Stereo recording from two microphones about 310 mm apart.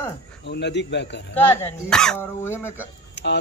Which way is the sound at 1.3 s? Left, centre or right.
Centre.